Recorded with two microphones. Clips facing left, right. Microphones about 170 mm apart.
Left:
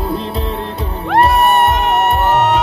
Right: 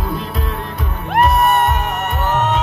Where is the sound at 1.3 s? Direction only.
75° left (ahead or behind).